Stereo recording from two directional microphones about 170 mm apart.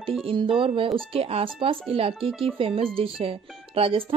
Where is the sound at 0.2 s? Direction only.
30° right (ahead or behind).